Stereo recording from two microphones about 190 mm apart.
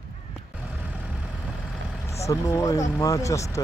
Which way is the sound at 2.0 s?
15° left (ahead or behind).